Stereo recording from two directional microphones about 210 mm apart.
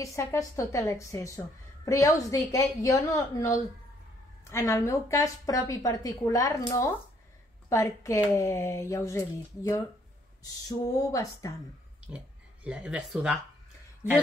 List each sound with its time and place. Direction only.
0.0 s speech: 15° left (ahead or behind)
7.7 s speech: 15° left (ahead or behind)
12.1 s speech: 5° right (ahead or behind)